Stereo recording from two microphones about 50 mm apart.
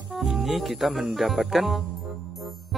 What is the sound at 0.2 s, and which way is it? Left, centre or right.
Speech, centre.